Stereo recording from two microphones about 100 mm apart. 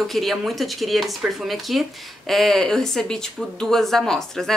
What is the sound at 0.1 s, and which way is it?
Speech, centre (ahead or behind).